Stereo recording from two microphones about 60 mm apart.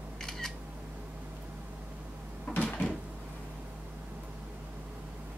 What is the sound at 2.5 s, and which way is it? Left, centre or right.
Cupboard open or close, left.